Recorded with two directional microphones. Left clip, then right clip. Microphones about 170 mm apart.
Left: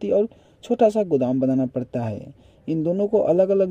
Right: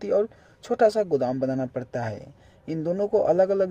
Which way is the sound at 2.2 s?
30° left (ahead or behind).